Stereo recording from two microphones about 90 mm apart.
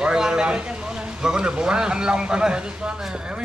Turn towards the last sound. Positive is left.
turn(degrees=-10)  # may be behind; listen again after turning